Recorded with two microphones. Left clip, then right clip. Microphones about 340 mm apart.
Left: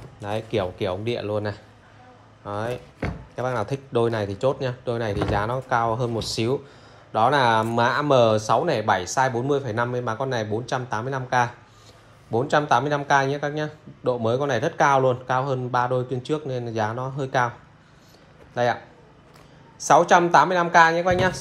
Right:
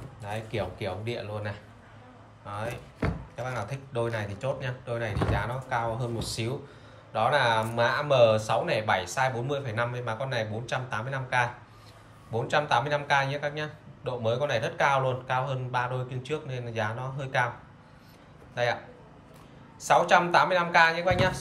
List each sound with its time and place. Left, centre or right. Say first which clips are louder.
0.3 s speech: left 8 dB; left
3.0 s a sound: even; centre
3.4 s speech: left 9 dB; centre
19.8 s speech: left 5 dB; centre